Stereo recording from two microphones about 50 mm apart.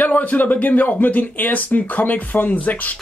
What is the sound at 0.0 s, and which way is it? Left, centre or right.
Speech, left.